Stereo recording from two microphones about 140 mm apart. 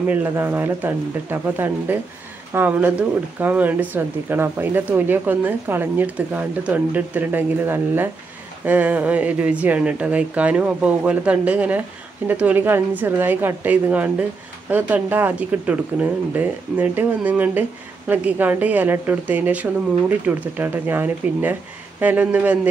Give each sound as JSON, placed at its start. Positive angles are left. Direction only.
{"t": 0.1, "sound": "speech", "side_deg": -15}